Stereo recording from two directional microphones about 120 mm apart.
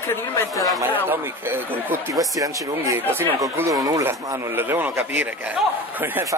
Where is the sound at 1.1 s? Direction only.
15° right (ahead or behind).